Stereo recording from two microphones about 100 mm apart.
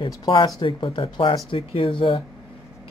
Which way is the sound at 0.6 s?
65° left (ahead or behind).